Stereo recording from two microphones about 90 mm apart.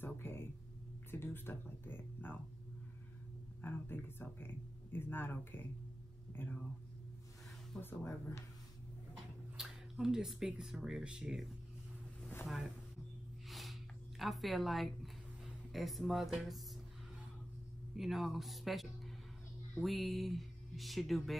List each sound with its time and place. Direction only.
0.0 s a sound: 25° left (ahead or behind)
1.1 s speech: 25° left (ahead or behind)
3.6 s speech: 25° left (ahead or behind)
7.8 s speech: 25° left (ahead or behind)
9.6 s speech: 5° right (ahead or behind)
13.5 s snort: centre (ahead or behind)
15.4 s speech: centre (ahead or behind)
17.9 s speech: centre (ahead or behind)